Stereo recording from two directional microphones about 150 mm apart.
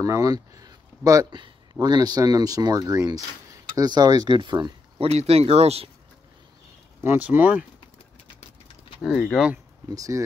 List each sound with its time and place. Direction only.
0.0 s speech: 20° right (ahead or behind)
4.9 s speech: 45° right (ahead or behind)
7.0 s speech: 10° right (ahead or behind)
9.0 s speech: 5° right (ahead or behind)
9.8 s speech: 25° right (ahead or behind)